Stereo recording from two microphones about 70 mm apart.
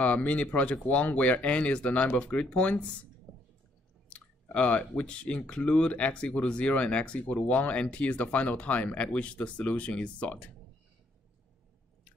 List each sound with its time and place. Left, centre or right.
0.0 s speech: centre
4.1 s speech: centre